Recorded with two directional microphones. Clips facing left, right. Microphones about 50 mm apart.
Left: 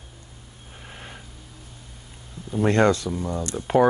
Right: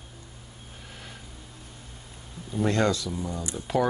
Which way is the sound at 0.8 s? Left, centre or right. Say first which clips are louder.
Left 4 dB; left.